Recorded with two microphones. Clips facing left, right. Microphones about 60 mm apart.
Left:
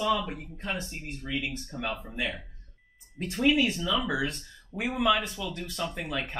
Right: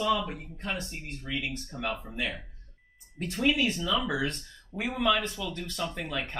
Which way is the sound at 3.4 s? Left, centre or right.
Centre.